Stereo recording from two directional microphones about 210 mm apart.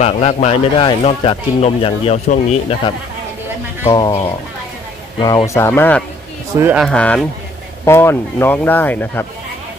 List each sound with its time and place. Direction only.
0.0 s speech: 30° left (ahead or behind)
3.9 s speech: 20° left (ahead or behind)
5.5 s speech: 10° left (ahead or behind)
6.5 s speech: 10° right (ahead or behind)
6.9 s a man's voice: 5° left (ahead or behind)